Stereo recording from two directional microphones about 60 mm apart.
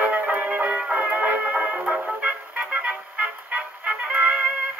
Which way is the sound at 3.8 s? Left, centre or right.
Right.